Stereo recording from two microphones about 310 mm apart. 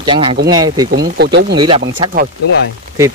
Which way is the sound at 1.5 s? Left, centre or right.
Centre.